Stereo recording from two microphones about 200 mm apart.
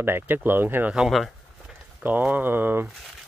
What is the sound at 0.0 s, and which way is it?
Speech, 10° right (ahead or behind).